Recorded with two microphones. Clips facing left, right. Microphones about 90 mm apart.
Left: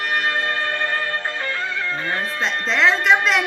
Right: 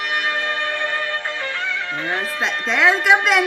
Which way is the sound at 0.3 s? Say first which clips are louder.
Even; 20° right (ahead or behind).